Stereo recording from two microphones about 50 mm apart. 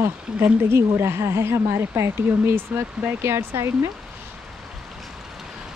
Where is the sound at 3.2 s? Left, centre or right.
Right.